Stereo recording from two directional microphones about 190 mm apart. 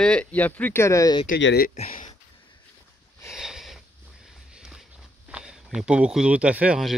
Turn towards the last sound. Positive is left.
turn(degrees=-5)  # may be behind; listen again after turning